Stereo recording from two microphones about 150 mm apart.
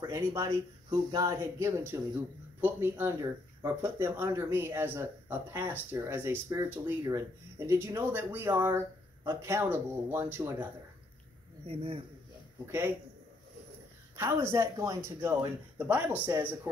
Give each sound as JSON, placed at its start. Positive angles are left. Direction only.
{"t": 0.0, "sound": "speech", "side_deg": -20}
{"t": 11.6, "sound": "speech", "side_deg": -40}
{"t": 12.6, "sound": "speech", "side_deg": -15}
{"t": 14.1, "sound": "speech", "side_deg": -15}